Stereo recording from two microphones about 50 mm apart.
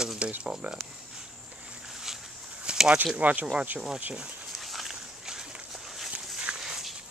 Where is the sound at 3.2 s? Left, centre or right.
Right.